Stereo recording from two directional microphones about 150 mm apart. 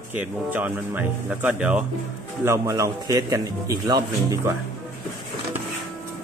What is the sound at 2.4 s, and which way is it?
A man's voice, 20° right (ahead or behind).